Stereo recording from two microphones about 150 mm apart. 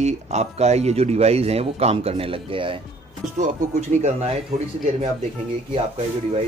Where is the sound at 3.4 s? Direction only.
55° right (ahead or behind).